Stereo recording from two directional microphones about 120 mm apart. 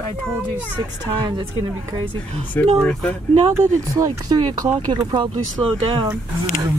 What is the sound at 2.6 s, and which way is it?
Speech, 15° left (ahead or behind).